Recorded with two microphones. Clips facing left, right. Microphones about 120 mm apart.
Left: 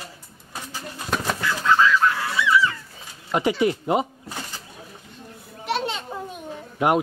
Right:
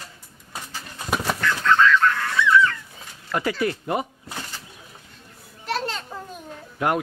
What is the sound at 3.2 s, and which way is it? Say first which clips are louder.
Speech: left 3 dB; 20° left (ahead or behind).